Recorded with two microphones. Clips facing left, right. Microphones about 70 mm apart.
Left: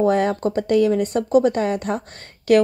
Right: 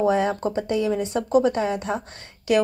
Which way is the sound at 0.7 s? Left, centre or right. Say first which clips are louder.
Left 8 dB; left.